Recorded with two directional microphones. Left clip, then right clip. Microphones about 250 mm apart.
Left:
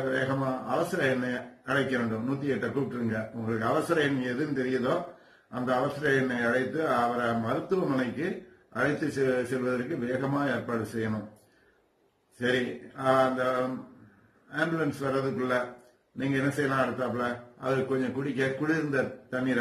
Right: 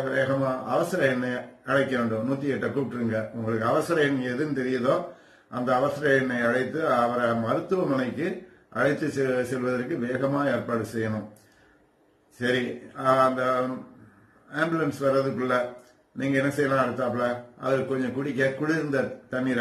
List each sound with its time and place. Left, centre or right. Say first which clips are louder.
0.0 s mantra: right 4 dB; centre
12.4 s mantra: right 2 dB; centre